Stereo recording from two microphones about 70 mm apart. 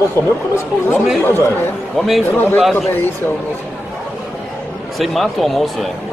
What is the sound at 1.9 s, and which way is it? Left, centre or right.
Speech, centre.